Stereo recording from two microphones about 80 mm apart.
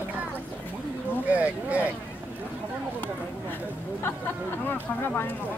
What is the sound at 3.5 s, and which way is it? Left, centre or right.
Speech, left.